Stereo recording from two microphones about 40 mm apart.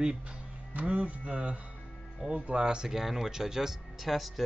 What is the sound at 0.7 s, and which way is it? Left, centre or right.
Speech, right.